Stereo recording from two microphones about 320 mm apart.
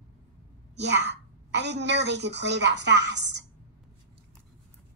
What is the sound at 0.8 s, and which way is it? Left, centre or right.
A woman's voice, right.